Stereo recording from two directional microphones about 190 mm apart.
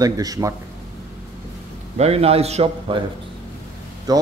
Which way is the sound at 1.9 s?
35° right (ahead or behind).